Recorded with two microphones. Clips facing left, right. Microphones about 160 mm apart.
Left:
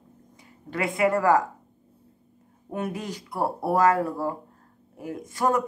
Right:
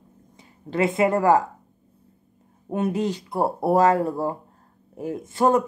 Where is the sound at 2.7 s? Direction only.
25° right (ahead or behind).